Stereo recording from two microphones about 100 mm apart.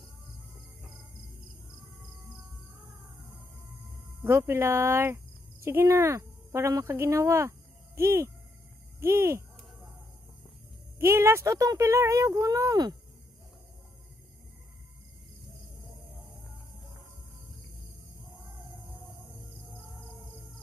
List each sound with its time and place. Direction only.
4.2 s speech: 25° right (ahead or behind)
11.0 s speech: 25° right (ahead or behind)